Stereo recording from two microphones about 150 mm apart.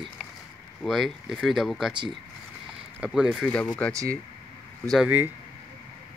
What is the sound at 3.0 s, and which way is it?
Speech, 5° right (ahead or behind).